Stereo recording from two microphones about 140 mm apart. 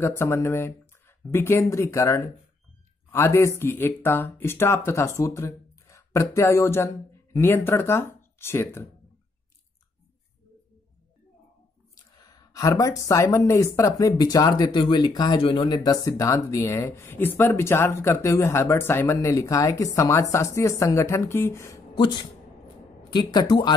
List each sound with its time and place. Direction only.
0.0 s speech: 15° left (ahead or behind)
11.9 s speech: 25° left (ahead or behind)
21.9 s speech: 35° left (ahead or behind)